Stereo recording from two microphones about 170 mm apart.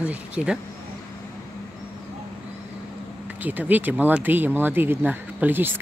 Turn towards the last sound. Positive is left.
turn(degrees=-10)  # may be behind; listen again after turning